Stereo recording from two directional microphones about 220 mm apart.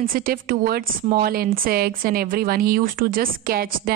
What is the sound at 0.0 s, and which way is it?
A woman's voice, 40° right (ahead or behind).